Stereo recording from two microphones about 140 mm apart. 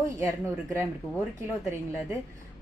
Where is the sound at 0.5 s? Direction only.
15° right (ahead or behind).